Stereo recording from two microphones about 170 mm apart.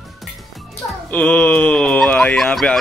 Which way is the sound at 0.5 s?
5° left (ahead or behind).